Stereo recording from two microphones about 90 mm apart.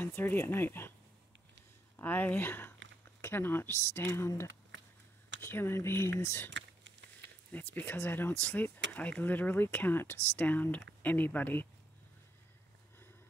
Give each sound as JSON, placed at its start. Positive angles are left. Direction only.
{"t": 0.0, "sound": "speech", "side_deg": 20}
{"t": 2.0, "sound": "speech", "side_deg": 20}
{"t": 5.4, "sound": "speech", "side_deg": 25}
{"t": 7.5, "sound": "speech", "side_deg": 20}